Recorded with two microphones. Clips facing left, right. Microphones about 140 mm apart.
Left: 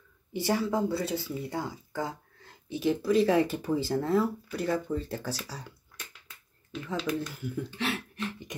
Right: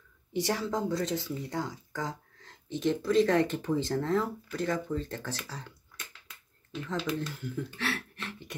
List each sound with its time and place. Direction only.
0.3 s speech: 5° left (ahead or behind)
7.2 s speech: 10° left (ahead or behind)
7.8 s speech: 20° left (ahead or behind)